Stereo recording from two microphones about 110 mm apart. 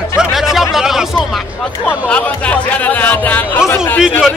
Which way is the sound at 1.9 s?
10° left (ahead or behind).